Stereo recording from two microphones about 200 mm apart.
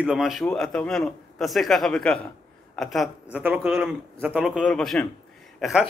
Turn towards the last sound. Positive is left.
turn(degrees=0)  # may be behind; listen again after turning